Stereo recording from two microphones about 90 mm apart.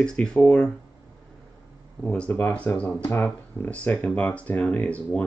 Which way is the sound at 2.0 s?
10° left (ahead or behind).